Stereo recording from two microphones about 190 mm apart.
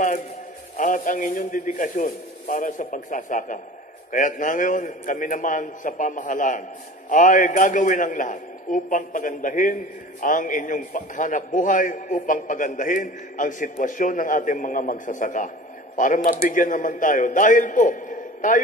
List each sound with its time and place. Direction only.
0.7 s a man's voice: 45° left (ahead or behind)